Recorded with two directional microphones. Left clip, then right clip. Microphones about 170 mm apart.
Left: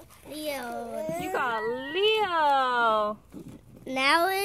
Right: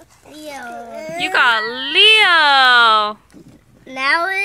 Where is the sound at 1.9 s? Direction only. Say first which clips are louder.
Right 16 dB; 15° right (ahead or behind).